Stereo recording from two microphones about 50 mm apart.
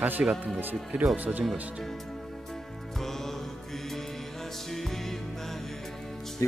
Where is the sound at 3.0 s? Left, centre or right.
Centre.